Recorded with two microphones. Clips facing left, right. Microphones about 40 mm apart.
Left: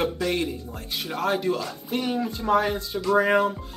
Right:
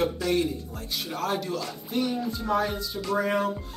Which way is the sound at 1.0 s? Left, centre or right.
Centre.